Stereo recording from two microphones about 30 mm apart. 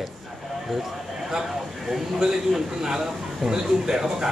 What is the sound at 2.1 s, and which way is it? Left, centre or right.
A man's voice, centre.